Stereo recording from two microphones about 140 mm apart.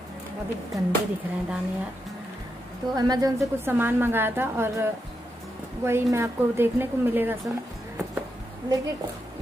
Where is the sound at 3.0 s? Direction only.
25° right (ahead or behind).